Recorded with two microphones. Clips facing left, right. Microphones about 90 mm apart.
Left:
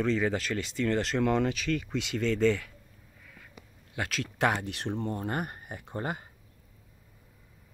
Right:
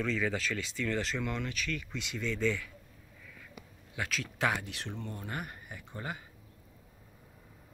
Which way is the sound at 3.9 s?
55° left (ahead or behind).